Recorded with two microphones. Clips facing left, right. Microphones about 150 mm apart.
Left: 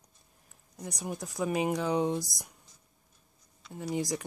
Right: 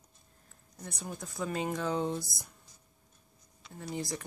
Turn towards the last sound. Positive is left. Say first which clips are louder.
# left 5 dB
turn(degrees=15)  # may be behind; listen again after turning